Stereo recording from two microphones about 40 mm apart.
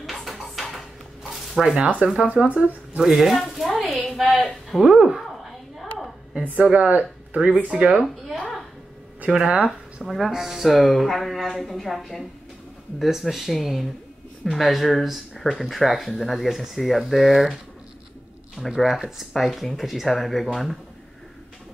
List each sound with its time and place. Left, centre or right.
0.0 s a sound: centre
1.8 s speech: right
3.0 s speech: centre
3.3 s a woman's voice: centre
3.7 s a sound: centre
4.7 s speech: centre
6.5 s speech: right
8.4 s a sound: centre
9.3 s speech: right
10.0 s a woman's voice: centre
13.0 s a woman's voice: centre
18.8 s a woman's voice: centre